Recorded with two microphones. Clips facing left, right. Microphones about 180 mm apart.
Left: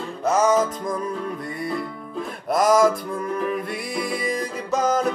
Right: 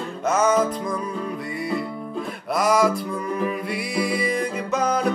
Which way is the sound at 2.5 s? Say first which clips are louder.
Left 2 dB; 45° left (ahead or behind).